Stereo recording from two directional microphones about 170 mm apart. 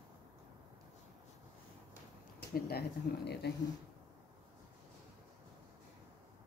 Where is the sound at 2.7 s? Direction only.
70° left (ahead or behind).